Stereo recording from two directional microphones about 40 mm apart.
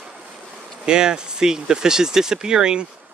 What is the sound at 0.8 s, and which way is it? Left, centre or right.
Speech, centre.